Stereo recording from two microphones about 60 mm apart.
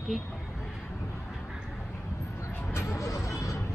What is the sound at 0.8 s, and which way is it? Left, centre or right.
Vehicle, left.